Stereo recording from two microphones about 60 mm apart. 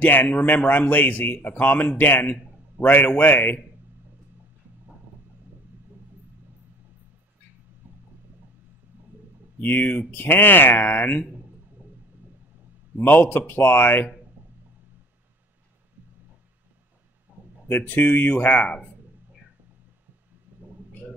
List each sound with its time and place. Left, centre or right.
0.0 s a man's voice: left
9.6 s a man's voice: left
13.0 s a man's voice: left
17.3 s a sound: right
17.6 s a man's voice: left